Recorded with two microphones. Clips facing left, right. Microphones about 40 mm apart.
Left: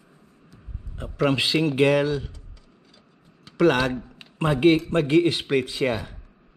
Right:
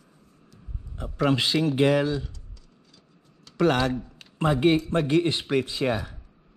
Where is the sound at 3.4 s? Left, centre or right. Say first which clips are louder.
Left 3 dB; left.